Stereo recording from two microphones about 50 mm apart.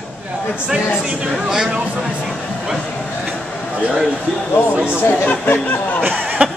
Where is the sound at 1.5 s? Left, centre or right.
Centre.